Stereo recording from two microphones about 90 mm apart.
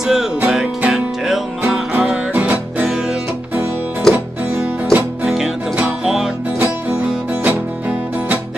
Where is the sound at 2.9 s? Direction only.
5° right (ahead or behind).